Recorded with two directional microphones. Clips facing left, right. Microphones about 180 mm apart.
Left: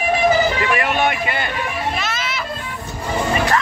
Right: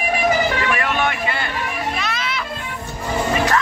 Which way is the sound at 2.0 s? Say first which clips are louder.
Even; 5° left (ahead or behind).